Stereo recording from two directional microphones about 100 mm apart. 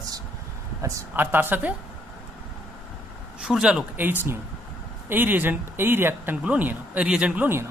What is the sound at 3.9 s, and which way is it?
A man's voice, 20° right (ahead or behind).